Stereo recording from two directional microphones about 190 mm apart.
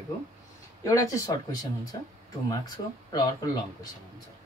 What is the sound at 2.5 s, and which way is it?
Speech, 20° left (ahead or behind).